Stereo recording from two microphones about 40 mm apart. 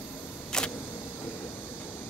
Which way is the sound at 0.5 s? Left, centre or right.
Centre.